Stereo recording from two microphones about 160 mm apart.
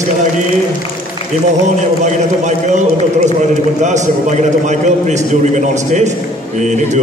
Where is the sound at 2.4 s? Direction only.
45° right (ahead or behind).